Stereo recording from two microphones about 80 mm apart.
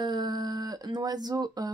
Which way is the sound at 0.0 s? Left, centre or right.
Right.